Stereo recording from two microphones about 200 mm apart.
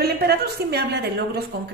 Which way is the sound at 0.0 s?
55° right (ahead or behind).